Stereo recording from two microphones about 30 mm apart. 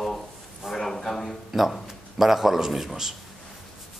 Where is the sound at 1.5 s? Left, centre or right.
Centre.